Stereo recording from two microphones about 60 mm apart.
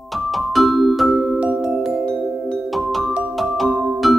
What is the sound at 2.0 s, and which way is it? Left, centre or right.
Music, centre.